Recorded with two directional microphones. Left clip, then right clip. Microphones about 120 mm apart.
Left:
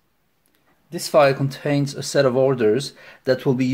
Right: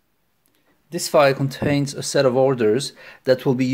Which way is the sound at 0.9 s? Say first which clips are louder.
Even; 35° right (ahead or behind).